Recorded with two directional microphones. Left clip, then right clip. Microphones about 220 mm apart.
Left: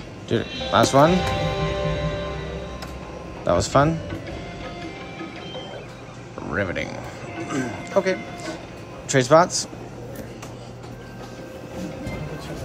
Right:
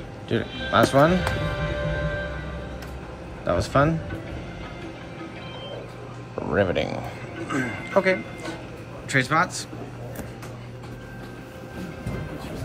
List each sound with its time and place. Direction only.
0.3 s speech: 5° left (ahead or behind)
1.3 s music: 35° left (ahead or behind)
3.4 s speech: 5° left (ahead or behind)
6.5 s a man's voice: 5° right (ahead or behind)